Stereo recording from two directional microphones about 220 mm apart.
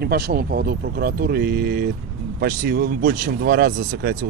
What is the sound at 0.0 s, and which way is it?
Speech, 45° right (ahead or behind).